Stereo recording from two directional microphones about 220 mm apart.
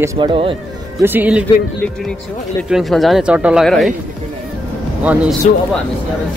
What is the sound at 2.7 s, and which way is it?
Speech, centre (ahead or behind).